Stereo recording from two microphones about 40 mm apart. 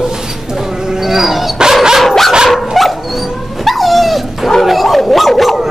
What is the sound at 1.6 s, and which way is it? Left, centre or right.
Dog, centre.